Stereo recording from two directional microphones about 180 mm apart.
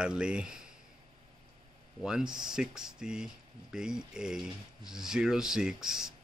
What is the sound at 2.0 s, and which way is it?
Speech, 5° right (ahead or behind).